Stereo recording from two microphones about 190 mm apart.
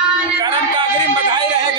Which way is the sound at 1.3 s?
20° right (ahead or behind).